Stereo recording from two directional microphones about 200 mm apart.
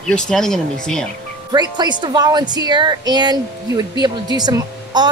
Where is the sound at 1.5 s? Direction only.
20° right (ahead or behind).